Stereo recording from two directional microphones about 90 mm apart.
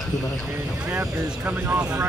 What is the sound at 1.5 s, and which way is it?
Speech, 25° right (ahead or behind).